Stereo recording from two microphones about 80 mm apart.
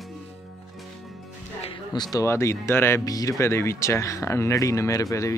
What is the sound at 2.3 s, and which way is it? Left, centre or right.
Speech, left.